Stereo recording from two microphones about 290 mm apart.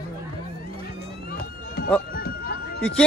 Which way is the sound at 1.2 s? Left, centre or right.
Left.